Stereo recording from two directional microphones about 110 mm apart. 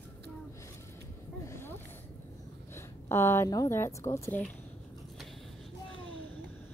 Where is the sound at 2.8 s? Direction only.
20° left (ahead or behind).